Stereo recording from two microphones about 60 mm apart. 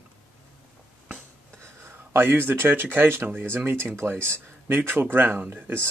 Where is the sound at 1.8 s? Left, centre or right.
Right.